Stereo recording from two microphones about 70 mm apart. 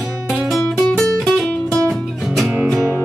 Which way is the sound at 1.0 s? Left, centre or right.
Centre.